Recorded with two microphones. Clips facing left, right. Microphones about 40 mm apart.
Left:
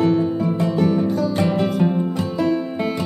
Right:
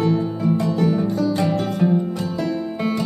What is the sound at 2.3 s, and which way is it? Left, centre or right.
Music, centre.